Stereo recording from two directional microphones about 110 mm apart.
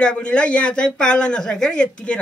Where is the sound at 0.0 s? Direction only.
10° left (ahead or behind).